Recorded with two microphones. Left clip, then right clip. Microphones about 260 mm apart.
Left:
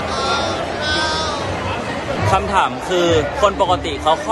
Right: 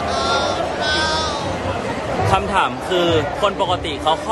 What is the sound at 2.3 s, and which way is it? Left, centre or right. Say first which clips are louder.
A man's voice: left 2 dB; centre.